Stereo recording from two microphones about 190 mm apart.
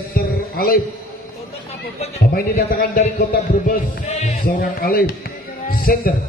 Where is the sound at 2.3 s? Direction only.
55° left (ahead or behind).